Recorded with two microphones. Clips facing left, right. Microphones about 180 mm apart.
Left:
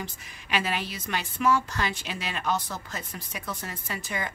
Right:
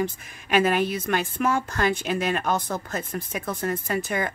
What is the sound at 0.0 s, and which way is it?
A woman's voice, 50° right (ahead or behind).